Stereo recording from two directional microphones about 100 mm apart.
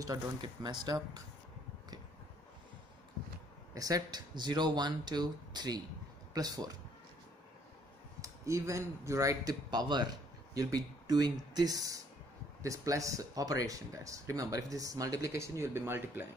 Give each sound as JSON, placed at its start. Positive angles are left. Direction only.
{"t": 0.4, "sound": "speech", "side_deg": -45}
{"t": 3.7, "sound": "speech", "side_deg": -35}
{"t": 8.2, "sound": "speech", "side_deg": -30}